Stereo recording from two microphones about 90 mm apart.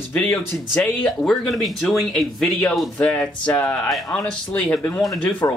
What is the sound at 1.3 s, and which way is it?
Speech, centre (ahead or behind).